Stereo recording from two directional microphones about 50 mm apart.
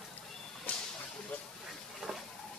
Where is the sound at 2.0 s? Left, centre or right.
Centre.